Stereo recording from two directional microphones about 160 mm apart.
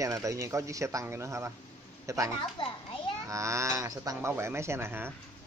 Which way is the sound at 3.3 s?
20° right (ahead or behind).